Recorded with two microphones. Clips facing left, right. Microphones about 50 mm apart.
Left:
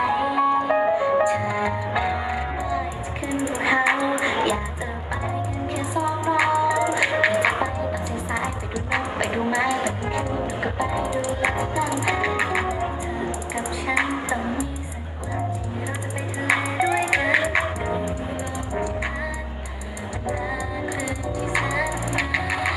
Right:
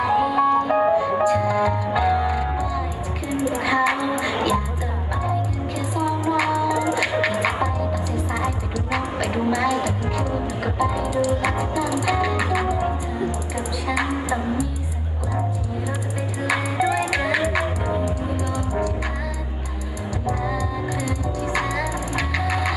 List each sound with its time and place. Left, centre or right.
0.0 s music: centre
5.8 s music: centre
12.6 s music: centre
16.4 s music: centre
20.2 s music: centre